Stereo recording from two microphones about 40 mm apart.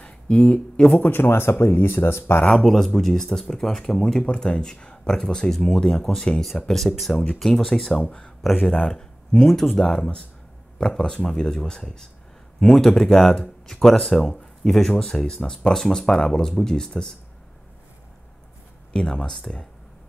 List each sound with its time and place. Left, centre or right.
0.0 s speech: left
1.1 s speech: left
2.5 s speech: centre
4.2 s speech: left
6.7 s speech: centre
9.6 s speech: centre
18.9 s speech: centre